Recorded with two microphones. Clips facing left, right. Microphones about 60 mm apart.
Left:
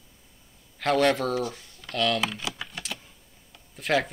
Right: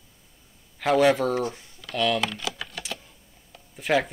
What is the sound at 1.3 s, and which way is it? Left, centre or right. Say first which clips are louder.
Speech: right 2 dB; right.